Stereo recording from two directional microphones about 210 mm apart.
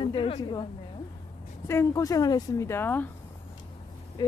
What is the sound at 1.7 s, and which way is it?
Speech, 15° left (ahead or behind).